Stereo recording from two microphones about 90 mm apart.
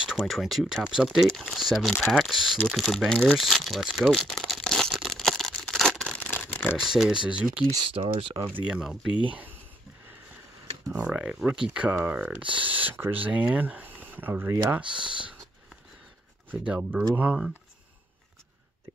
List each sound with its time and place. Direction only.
0.0 s speech: 5° right (ahead or behind)
4.2 s a sound: 5° left (ahead or behind)
6.2 s a sound: 25° left (ahead or behind)
6.7 s speech: 5° right (ahead or behind)
7.8 s speech: 80° right
8.6 s speech: 10° right (ahead or behind)
10.9 s speech: 10° right (ahead or behind)
16.4 s speech: 15° right (ahead or behind)